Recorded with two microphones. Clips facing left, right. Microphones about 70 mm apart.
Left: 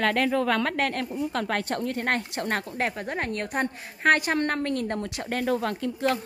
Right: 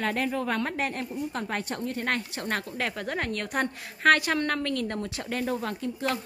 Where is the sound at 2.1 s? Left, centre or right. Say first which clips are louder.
Left 2 dB; left.